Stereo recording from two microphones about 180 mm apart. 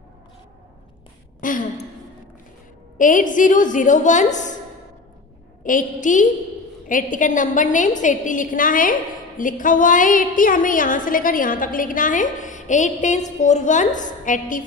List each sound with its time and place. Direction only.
1.4 s a sound: 50° left (ahead or behind)
3.0 s a woman's voice: 45° left (ahead or behind)
5.6 s a woman's voice: 50° left (ahead or behind)